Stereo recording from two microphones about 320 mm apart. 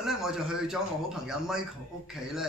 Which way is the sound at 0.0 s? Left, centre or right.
Centre.